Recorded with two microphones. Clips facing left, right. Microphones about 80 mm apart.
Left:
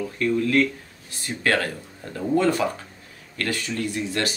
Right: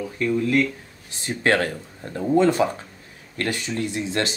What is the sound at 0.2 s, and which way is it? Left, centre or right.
Speech, centre.